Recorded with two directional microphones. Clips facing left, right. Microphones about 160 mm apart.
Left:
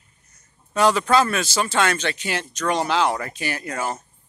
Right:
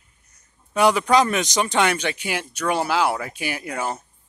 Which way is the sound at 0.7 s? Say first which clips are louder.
Right 1 dB; 10° right (ahead or behind).